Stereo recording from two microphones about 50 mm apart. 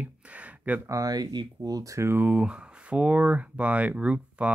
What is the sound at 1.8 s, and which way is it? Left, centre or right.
Speech, right.